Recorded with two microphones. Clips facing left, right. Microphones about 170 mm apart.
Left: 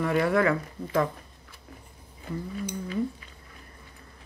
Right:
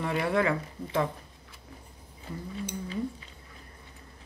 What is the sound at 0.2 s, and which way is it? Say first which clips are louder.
Speech: left 1 dB; 25° right (ahead or behind).